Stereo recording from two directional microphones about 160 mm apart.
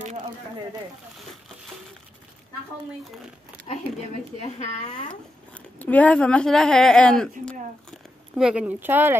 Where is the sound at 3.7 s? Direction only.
40° left (ahead or behind).